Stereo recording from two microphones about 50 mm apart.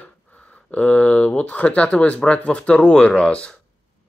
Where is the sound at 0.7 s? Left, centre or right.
Left.